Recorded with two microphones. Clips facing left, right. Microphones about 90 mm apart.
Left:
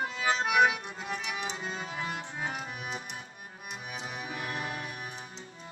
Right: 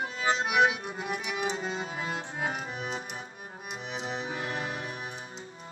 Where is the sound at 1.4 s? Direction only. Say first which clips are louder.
Right 5 dB; 40° right (ahead or behind).